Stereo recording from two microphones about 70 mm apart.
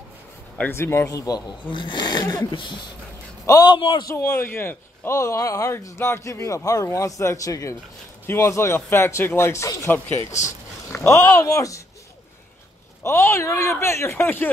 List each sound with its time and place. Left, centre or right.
0.7 s speech: left
1.0 s a man's voice: left
2.0 s speech: left
3.4 s a man's voice: left
4.2 s a man's voice: left
5.9 s a man's voice: left
8.3 s speech: left
11.0 s a man's voice: left
13.0 s speech: left